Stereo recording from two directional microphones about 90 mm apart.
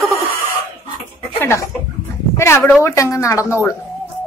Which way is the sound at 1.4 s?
30° left (ahead or behind).